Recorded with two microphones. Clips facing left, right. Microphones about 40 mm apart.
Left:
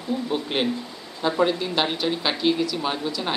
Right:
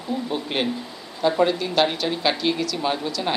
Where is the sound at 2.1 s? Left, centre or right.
Centre.